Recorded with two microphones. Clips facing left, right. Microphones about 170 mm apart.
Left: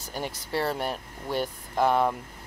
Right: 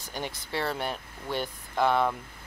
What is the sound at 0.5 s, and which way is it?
Speech, 40° left (ahead or behind).